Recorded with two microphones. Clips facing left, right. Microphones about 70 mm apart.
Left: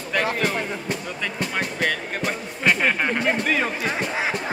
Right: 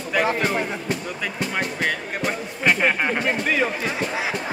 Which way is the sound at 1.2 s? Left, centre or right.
Centre.